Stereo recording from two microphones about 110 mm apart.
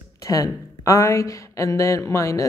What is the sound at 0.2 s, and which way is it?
Speech, 30° left (ahead or behind).